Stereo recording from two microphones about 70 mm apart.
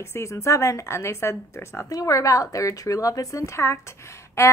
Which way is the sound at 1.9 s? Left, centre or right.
Left.